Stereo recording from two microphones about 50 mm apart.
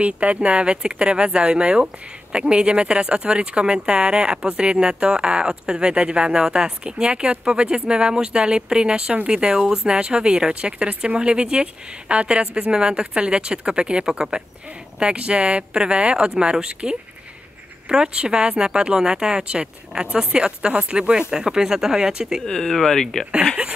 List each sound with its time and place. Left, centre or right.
0.0 s a woman's voice: right
22.4 s speech: centre